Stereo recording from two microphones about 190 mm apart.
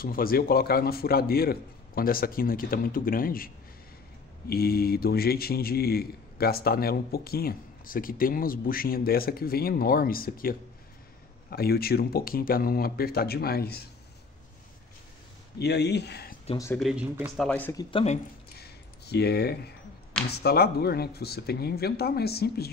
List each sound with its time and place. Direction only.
0.0 s a man's voice: 50° left (ahead or behind)
15.6 s speech: 60° left (ahead or behind)
16.7 s speech: 5° right (ahead or behind)
17.5 s speech: 10° left (ahead or behind)
18.0 s speech: 30° left (ahead or behind)
18.6 s a sound: 60° left (ahead or behind)
20.2 s speech: 55° left (ahead or behind)